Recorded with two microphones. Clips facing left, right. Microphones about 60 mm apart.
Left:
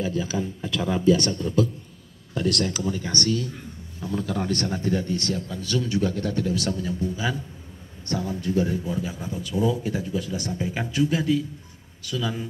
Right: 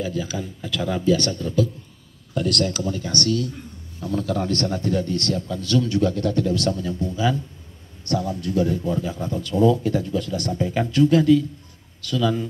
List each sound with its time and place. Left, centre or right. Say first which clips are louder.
0.0 s a man's voice: left 1 dB; left